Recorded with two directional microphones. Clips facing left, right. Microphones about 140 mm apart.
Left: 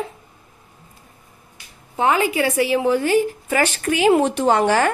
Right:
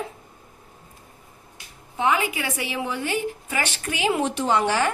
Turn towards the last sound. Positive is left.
turn(degrees=50)  # may be behind; listen again after turning